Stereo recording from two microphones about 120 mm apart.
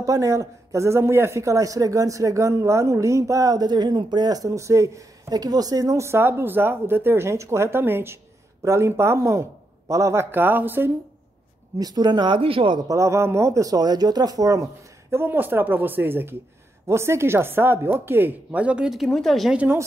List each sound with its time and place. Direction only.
0.0 s a man's voice: 25° right (ahead or behind)
11.8 s speech: 35° right (ahead or behind)
12.8 s a man's voice: 25° right (ahead or behind); by 19.5 s centre (ahead or behind)
19.5 s speech: 10° right (ahead or behind)